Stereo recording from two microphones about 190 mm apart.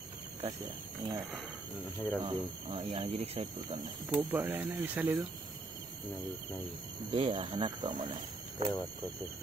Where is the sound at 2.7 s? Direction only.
30° right (ahead or behind).